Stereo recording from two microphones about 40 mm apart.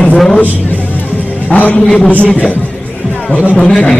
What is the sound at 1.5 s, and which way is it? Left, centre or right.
Speech, left.